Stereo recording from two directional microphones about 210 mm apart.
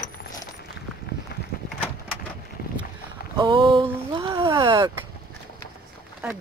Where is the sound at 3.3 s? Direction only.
25° right (ahead or behind).